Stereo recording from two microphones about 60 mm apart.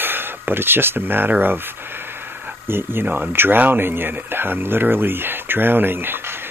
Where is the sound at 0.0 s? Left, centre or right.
Right.